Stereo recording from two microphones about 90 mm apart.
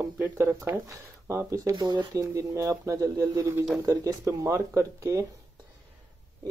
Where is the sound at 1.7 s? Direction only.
55° right (ahead or behind).